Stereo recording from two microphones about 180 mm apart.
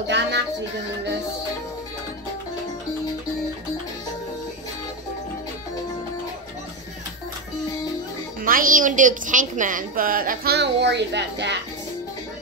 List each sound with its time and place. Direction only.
0.0 s music: 75° right (ahead or behind)
8.4 s a woman's voice: 50° right (ahead or behind); by 11.5 s 75° right (ahead or behind)